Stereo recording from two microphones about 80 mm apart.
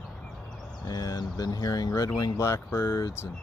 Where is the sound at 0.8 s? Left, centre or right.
Left.